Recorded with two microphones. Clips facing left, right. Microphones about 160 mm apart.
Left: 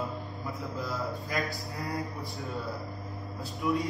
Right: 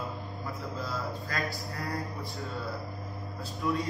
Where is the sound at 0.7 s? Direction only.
20° left (ahead or behind).